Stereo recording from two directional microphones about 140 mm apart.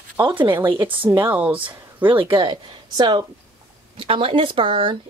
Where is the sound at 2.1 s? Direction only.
35° right (ahead or behind).